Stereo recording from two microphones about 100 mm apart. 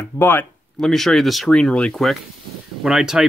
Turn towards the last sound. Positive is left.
turn(degrees=-5)  # may be behind; listen again after turning